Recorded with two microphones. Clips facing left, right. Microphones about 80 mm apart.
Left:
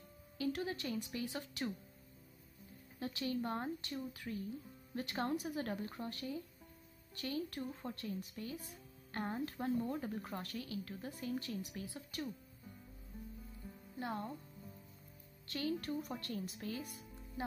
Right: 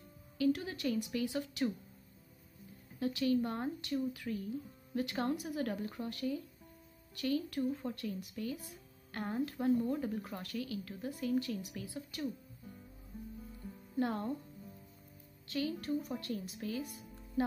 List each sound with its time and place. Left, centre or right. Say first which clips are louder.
0.4 s a woman's voice: right 6 dB; left
3.0 s a woman's voice: right 7 dB; left
13.9 s speech: right 7 dB; centre
15.4 s speech: right 2 dB; left